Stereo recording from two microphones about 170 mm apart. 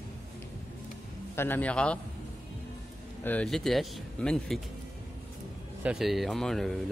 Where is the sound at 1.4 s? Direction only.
10° left (ahead or behind).